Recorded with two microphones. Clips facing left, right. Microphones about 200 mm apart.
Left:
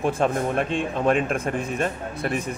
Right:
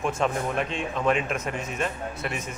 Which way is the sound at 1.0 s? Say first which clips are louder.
Left 3 dB; 35° left (ahead or behind).